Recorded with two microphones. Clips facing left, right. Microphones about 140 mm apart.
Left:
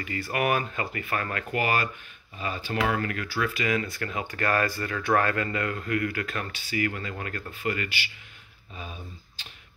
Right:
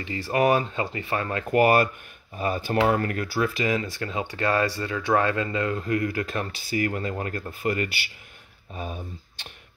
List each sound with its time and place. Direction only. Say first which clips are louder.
0.0 s speech: right 5 dB; 25° right (ahead or behind)
1.5 s speech: right 9 dB; 45° right (ahead or behind)